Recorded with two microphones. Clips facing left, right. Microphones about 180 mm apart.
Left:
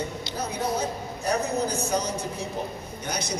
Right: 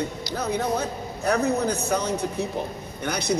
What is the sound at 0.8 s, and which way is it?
Speech, 60° right (ahead or behind).